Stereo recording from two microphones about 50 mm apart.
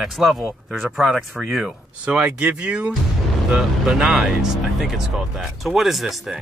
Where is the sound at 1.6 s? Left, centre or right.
Centre.